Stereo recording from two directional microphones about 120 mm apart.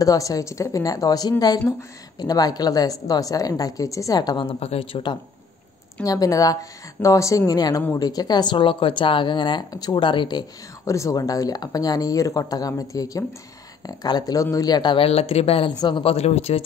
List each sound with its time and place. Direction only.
0.0 s a woman's voice: 30° left (ahead or behind)
4.5 s speech: 55° left (ahead or behind)
6.0 s a woman's voice: 30° left (ahead or behind)
10.9 s a woman's voice: 25° left (ahead or behind)
15.0 s speech: 55° left (ahead or behind)
15.7 s a woman's voice: 35° left (ahead or behind)
16.0 s speech: 55° left (ahead or behind)